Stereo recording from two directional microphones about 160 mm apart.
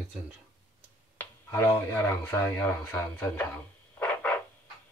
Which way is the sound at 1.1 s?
15° left (ahead or behind).